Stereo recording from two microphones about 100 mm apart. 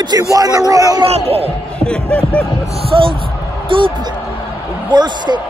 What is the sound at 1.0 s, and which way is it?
Speech, 90° right.